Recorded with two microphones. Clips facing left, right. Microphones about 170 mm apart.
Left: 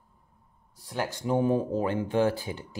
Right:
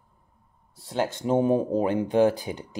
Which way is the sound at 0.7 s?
25° right (ahead or behind).